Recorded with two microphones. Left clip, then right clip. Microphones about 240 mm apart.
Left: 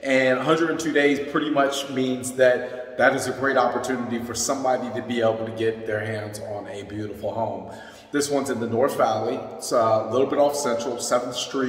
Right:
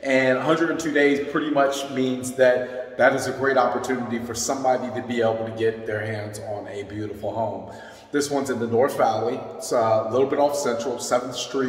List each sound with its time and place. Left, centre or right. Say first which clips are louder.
0.0 s speech: even; centre
8.1 s speech: even; centre